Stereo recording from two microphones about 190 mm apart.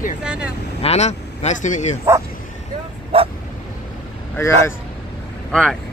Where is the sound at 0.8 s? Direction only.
35° left (ahead or behind).